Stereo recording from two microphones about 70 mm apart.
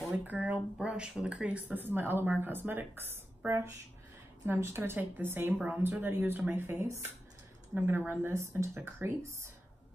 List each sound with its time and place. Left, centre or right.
0.1 s speech: right
7.7 s speech: right
8.3 s speech: right